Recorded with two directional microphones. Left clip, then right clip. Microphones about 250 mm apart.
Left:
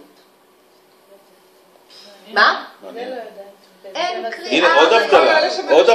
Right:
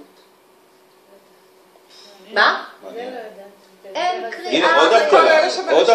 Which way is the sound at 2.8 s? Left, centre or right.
Left.